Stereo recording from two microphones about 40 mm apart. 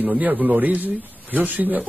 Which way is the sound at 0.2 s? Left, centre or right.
Right.